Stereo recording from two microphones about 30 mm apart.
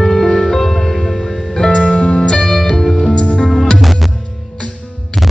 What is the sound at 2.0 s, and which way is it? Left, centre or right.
Music, left.